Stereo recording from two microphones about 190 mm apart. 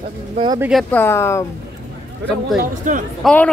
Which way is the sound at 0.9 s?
15° left (ahead or behind).